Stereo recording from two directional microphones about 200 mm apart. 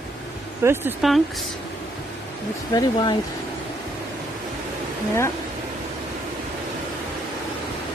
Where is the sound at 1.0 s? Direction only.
Centre (ahead or behind).